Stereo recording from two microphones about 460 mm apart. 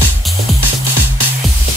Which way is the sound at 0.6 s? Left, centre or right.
Left.